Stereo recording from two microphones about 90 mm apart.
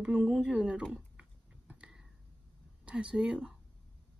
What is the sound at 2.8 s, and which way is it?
Speech, 10° right (ahead or behind).